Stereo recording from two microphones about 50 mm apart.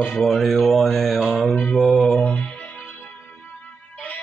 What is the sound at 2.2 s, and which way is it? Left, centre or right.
Music, left.